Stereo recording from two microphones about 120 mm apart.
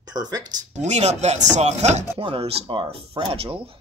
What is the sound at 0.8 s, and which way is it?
Chopping, 70° right (ahead or behind).